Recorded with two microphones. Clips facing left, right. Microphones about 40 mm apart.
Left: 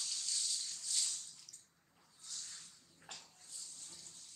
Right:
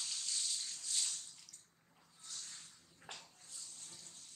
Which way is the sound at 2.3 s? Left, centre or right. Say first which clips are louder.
Even; centre.